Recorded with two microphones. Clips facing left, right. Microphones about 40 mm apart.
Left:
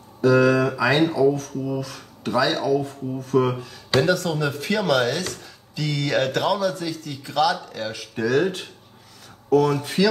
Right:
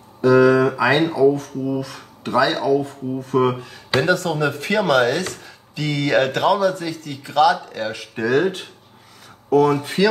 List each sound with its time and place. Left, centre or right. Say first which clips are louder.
0.2 s speech: right 4 dB; centre